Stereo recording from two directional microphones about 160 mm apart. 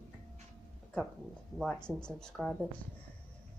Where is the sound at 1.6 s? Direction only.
Centre (ahead or behind).